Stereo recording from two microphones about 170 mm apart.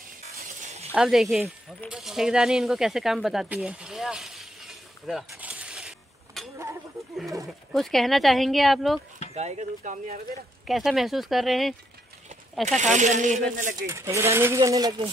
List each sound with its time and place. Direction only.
0.6 s sizzle: 45° right (ahead or behind)
0.9 s speech: 5° right (ahead or behind)
5.3 s vehicle: 10° right (ahead or behind)
7.7 s speech: centre (ahead or behind)
9.3 s speech: 40° right (ahead or behind)
10.7 s speech: centre (ahead or behind)
12.6 s speech: 45° right (ahead or behind)
13.8 s speech: 15° right (ahead or behind)